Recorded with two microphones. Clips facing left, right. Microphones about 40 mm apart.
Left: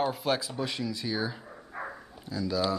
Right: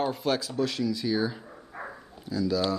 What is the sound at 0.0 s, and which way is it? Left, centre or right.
Speech, centre.